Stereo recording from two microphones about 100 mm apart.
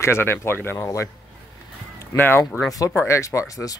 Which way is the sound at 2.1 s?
20° left (ahead or behind).